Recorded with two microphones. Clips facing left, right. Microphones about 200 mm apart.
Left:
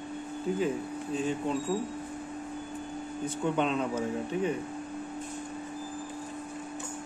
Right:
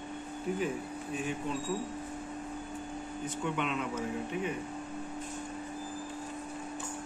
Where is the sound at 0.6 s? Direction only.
30° left (ahead or behind).